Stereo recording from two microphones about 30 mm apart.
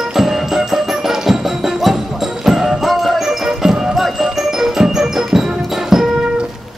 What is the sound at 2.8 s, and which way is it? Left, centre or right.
Music, centre.